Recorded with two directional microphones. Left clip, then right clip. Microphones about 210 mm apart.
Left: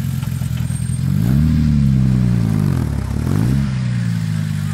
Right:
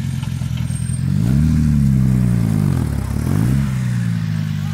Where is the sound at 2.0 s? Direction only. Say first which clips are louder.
Even; 35° right (ahead or behind).